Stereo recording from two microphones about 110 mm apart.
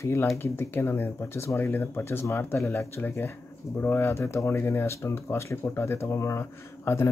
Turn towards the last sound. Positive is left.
turn(degrees=25)  # may be behind; listen again after turning